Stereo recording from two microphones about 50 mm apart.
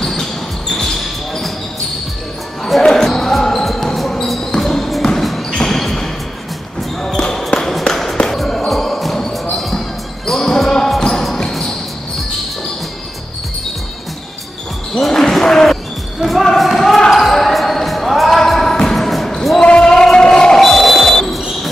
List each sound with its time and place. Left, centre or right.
0.0 s basketball bounce: centre
2.6 s basketball bounce: centre
7.1 s basketball bounce: centre
7.6 s a sound: centre
8.3 s basketball bounce: centre
15.0 s basketball bounce: centre
19.6 s a sound: centre
20.6 s music: centre